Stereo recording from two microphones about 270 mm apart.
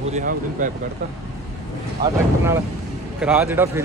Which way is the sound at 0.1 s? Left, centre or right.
Right.